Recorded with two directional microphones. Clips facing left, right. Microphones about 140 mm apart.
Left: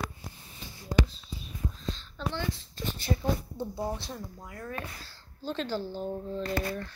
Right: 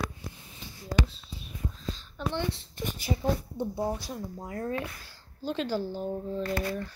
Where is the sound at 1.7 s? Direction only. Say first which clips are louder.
Even; 10° right (ahead or behind).